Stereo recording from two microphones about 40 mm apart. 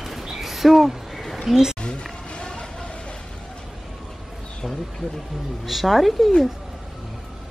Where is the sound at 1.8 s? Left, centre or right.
Left.